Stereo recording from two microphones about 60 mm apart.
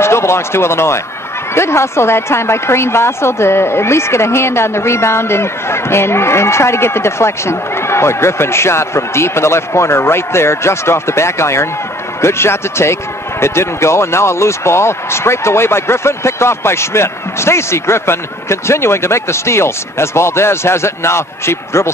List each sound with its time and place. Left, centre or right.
0.0 s a woman's voice: left